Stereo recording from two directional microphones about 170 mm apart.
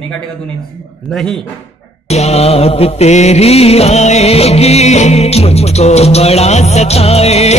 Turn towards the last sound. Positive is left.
turn(degrees=40)  # may be behind; listen again after turning